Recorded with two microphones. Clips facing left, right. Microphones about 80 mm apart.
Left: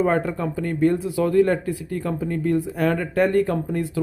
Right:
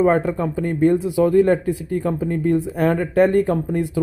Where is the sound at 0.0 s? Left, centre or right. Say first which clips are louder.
Right 4 dB; centre.